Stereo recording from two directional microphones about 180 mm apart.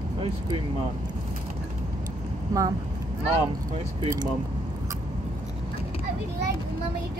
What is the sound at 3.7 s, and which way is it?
Speech, 30° right (ahead or behind).